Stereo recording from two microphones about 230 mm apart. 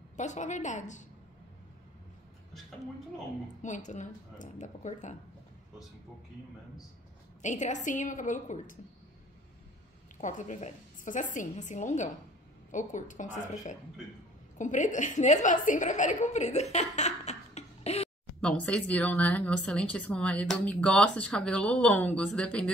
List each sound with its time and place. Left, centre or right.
0.2 s a woman's voice: left
3.6 s a woman's voice: left
7.4 s a woman's voice: left
10.2 s a woman's voice: left
18.4 s speech: centre